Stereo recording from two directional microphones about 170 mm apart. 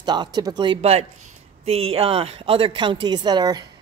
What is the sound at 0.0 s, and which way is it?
Speech, 25° right (ahead or behind).